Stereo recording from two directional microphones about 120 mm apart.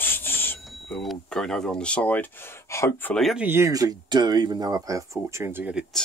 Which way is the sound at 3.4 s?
20° right (ahead or behind).